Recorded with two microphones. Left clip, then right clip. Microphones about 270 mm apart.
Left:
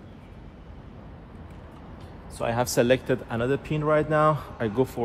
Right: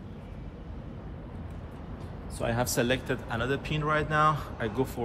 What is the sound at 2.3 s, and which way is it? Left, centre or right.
Speech, left.